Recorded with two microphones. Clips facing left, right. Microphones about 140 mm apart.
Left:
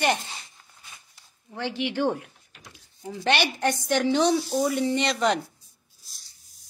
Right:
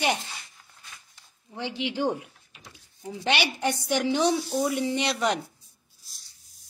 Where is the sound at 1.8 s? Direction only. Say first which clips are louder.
Left 2 dB; 15° right (ahead or behind).